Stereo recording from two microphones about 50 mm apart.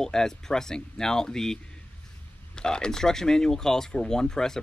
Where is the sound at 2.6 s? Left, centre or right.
Centre.